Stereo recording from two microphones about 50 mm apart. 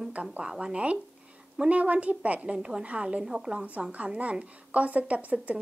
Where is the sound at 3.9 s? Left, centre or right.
Right.